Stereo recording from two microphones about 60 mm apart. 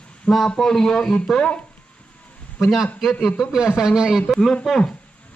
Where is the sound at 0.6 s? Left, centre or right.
Centre.